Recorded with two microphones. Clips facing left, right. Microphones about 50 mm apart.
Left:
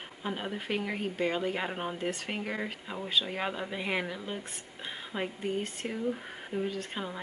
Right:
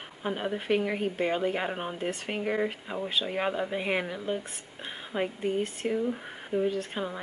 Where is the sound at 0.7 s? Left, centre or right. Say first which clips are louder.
Right 6 dB; centre.